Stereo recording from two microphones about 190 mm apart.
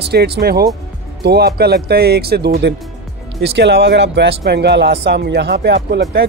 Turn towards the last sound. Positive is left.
turn(degrees=-60)  # may be behind; listen again after turning